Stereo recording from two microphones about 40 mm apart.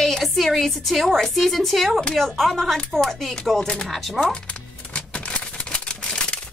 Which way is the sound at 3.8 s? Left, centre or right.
Centre.